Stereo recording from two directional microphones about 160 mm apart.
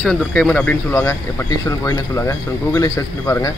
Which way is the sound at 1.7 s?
20° left (ahead or behind).